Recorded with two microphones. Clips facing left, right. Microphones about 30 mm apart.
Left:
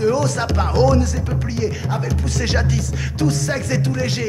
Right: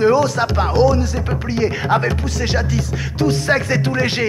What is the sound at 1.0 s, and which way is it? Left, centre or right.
Speech, right.